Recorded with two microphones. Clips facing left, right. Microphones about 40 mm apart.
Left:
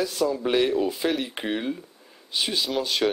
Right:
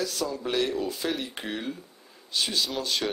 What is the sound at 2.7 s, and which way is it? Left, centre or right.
Speech, centre.